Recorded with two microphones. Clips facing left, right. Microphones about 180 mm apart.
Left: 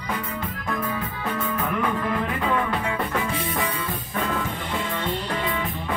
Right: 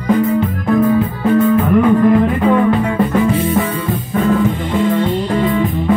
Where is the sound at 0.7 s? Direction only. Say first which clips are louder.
Right 16 dB; 45° right (ahead or behind).